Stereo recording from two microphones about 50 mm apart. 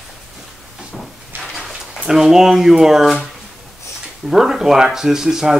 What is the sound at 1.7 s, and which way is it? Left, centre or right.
Speech, centre.